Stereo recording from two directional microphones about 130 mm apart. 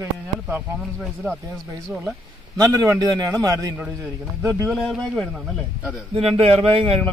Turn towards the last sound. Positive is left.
turn(degrees=-45)  # may be behind; listen again after turning